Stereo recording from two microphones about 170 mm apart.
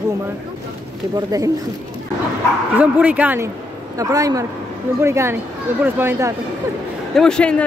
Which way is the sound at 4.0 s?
20° right (ahead or behind).